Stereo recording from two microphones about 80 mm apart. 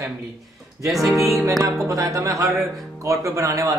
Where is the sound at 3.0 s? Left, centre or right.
Right.